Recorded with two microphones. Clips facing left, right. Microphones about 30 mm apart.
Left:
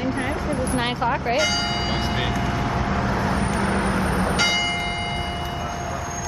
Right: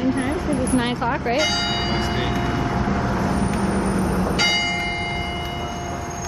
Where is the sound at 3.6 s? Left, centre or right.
Left.